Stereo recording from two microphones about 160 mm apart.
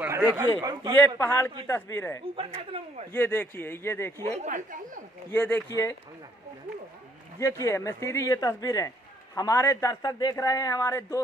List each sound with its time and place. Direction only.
0.0 s a man's voice: 10° right (ahead or behind)
0.9 s speech: 15° left (ahead or behind)
2.3 s speech: 35° right (ahead or behind)
3.1 s speech: 15° left (ahead or behind)
4.4 s speech: 50° right (ahead or behind)
5.3 s speech: 10° left (ahead or behind)
7.3 s speech: 20° left (ahead or behind)